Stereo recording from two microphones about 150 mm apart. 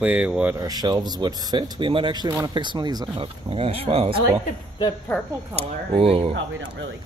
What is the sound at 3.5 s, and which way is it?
Speech, 40° right (ahead or behind).